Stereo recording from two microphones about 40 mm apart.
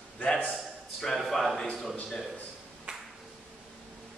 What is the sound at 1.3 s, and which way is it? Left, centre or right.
Speech, centre.